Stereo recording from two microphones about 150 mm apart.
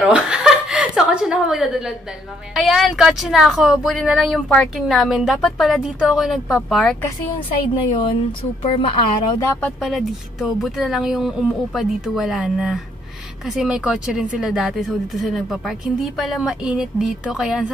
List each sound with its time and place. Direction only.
0.1 s a woman's voice: 5° right (ahead or behind)
7.4 s a woman's voice: 30° left (ahead or behind)
9.4 s speech: 15° left (ahead or behind)
9.8 s speech: centre (ahead or behind)